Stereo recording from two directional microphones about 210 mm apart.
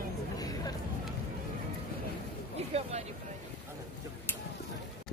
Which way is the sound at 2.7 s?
30° right (ahead or behind).